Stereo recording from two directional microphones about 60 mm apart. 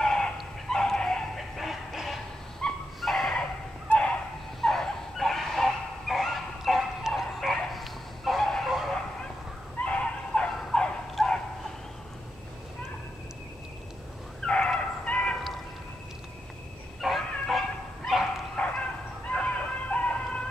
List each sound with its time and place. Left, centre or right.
0.0 s dog: centre
4.6 s dog: centre
9.8 s a sound: centre
10.7 s turkey: centre
11.2 s bow-wow: centre
14.4 s fowl: centre
17.0 s bow-wow: centre
18.6 s fowl: left